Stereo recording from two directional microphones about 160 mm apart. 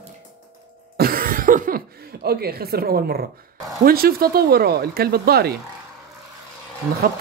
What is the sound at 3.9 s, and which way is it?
Speech, 70° right (ahead or behind).